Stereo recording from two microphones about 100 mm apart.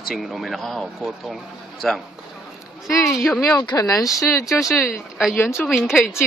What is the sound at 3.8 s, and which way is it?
Speech, 35° left (ahead or behind).